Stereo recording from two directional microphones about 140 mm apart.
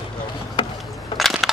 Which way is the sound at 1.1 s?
Centre (ahead or behind).